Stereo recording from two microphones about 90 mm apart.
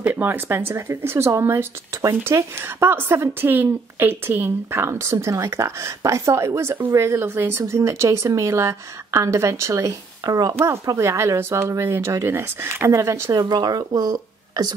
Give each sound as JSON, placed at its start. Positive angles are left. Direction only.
{"t": 0.0, "sound": "speech", "side_deg": -20}
{"t": 10.5, "sound": "speech", "side_deg": -30}